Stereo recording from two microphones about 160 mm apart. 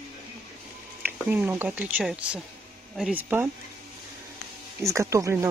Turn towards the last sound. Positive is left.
turn(degrees=-20)  # may be behind; listen again after turning